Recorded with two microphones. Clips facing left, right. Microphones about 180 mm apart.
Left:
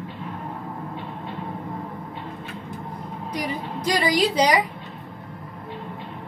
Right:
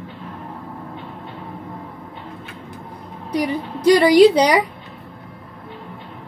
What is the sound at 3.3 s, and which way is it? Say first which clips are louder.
A woman's voice: right 8 dB; 65° right (ahead or behind).